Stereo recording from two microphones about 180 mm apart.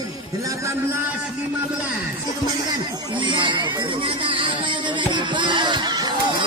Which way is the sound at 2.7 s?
25° right (ahead or behind).